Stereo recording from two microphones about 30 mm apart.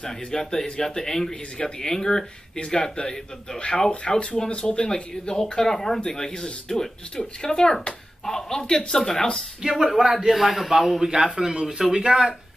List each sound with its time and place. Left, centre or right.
0.0 s speech: left
4.8 s speech: left
5.9 s speech: left
6.7 s speech: centre
9.6 s a man's voice: centre
9.8 s a man's voice: centre
11.0 s a man's voice: centre